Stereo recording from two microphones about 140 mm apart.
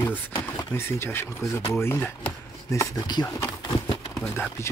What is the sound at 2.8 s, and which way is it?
Speech, 30° left (ahead or behind).